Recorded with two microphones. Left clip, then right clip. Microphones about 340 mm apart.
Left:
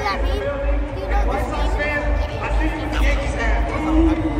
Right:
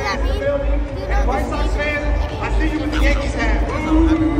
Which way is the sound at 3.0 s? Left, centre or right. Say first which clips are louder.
Right 1 dB; right.